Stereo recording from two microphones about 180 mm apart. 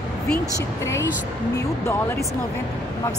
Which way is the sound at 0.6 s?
15° left (ahead or behind).